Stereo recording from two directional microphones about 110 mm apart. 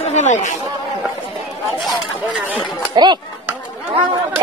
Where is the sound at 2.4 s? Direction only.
15° right (ahead or behind).